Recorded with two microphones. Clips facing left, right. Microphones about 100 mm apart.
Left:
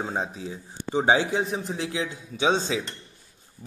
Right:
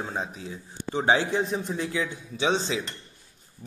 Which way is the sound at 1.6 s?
90° left.